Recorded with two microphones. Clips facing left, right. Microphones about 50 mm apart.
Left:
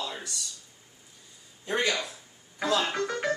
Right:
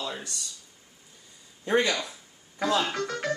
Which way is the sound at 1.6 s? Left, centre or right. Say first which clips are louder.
Right 4 dB; right.